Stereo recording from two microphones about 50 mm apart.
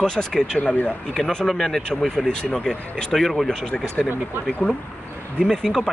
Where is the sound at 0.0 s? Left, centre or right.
Centre.